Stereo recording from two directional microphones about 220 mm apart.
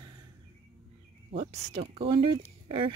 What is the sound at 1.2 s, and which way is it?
Speech, 25° right (ahead or behind).